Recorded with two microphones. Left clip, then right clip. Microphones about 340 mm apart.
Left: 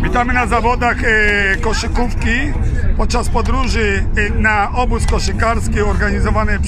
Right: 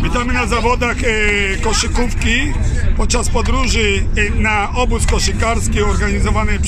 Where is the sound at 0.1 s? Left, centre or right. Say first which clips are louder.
Left 4 dB; centre.